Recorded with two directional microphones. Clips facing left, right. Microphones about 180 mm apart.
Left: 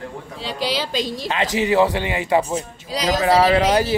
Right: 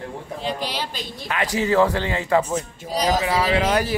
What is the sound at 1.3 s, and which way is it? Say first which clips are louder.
Speech: left 1 dB; 20° left (ahead or behind).